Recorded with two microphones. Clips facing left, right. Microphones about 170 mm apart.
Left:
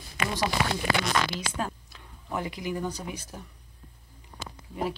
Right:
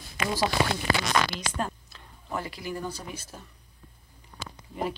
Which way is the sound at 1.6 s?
15° left (ahead or behind).